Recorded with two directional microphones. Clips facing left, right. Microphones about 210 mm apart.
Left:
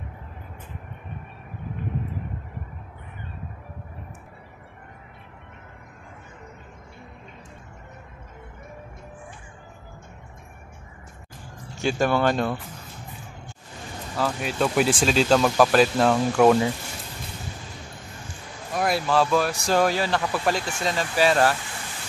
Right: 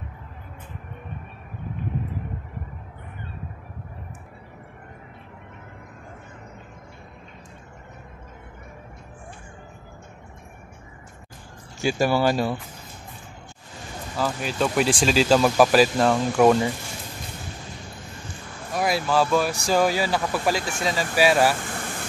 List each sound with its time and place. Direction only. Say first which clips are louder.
11.8 s speech: right 1 dB; 5° right (ahead or behind)
14.1 s speech: even; centre (ahead or behind)
18.8 s speech: even; centre (ahead or behind)
21.5 s vehicle: right 6 dB; 50° right (ahead or behind)